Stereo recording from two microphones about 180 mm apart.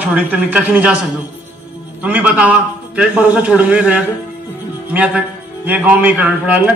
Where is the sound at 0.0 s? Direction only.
10° right (ahead or behind).